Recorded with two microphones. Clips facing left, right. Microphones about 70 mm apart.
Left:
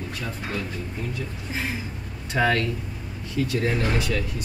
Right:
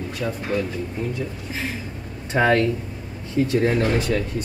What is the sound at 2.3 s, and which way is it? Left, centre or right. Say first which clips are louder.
Speech: right 4 dB; right.